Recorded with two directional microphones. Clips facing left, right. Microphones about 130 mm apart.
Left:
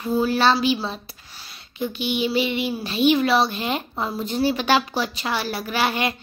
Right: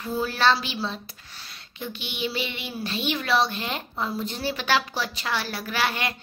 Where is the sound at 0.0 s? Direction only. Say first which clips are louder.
Left 4 dB; 15° left (ahead or behind).